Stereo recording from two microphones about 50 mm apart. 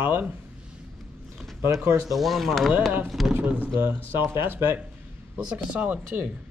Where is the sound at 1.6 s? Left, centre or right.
Right.